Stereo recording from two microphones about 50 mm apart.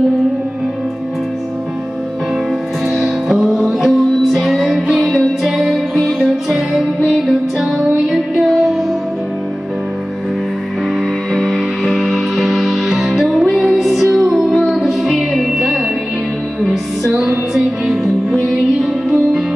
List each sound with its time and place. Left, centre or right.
2.9 s music: centre
11.3 s music: centre
17.1 s music: right
17.8 s music: centre